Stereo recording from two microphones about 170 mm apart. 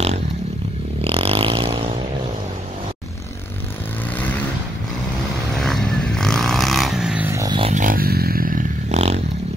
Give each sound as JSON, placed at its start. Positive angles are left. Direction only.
{"t": 1.0, "sound": "vehicle", "side_deg": -35}
{"t": 5.6, "sound": "vehicle", "side_deg": 5}
{"t": 7.7, "sound": "a sound", "side_deg": -55}